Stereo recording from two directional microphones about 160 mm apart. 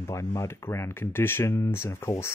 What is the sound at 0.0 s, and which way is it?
Speech, 20° left (ahead or behind).